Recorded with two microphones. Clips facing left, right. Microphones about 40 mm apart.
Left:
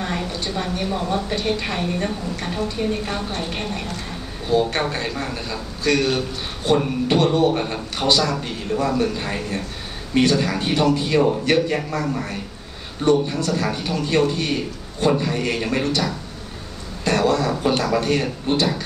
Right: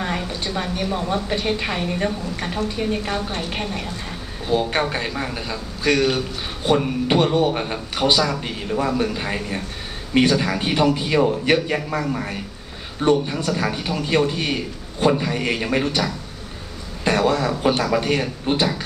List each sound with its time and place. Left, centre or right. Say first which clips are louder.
0.3 s a man's voice: even; centre